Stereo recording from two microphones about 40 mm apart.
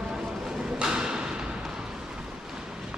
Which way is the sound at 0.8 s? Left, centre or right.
Centre.